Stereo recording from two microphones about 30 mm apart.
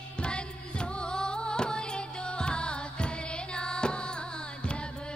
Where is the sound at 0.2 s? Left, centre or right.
Left.